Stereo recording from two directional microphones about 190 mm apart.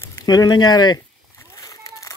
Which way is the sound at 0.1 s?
20° left (ahead or behind).